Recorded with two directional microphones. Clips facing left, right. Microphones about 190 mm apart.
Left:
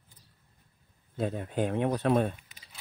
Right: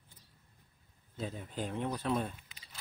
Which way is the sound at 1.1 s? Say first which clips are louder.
Left 9 dB; 65° left (ahead or behind).